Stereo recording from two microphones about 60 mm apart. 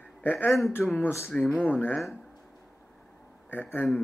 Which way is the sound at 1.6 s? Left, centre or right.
Left.